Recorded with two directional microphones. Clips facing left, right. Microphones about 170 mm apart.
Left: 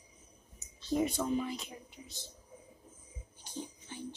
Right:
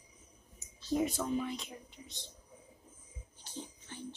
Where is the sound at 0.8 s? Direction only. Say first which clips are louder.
Left 1 dB; centre (ahead or behind).